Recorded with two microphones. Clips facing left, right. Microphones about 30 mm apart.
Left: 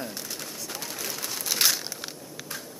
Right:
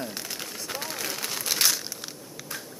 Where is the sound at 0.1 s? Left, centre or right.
Right.